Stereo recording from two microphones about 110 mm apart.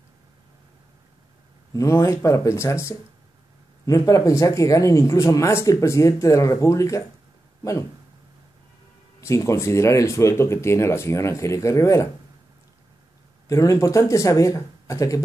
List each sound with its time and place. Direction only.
1.7 s speech: 30° left (ahead or behind)
9.2 s speech: 25° left (ahead or behind)
13.5 s speech: 30° left (ahead or behind)